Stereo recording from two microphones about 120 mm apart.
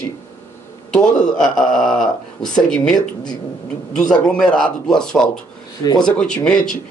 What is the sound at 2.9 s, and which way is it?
Speech, 35° left (ahead or behind).